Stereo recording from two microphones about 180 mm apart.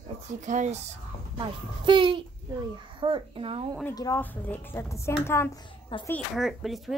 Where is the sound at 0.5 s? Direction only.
40° right (ahead or behind).